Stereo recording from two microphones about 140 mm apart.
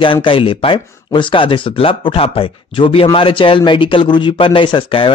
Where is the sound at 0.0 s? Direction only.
40° left (ahead or behind).